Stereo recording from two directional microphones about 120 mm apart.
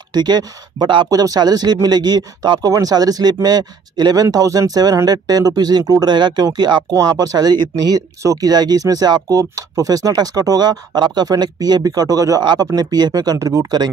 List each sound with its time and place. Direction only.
0.1 s speech: 35° right (ahead or behind)